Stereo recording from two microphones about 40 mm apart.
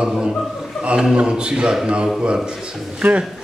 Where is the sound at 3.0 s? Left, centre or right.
Right.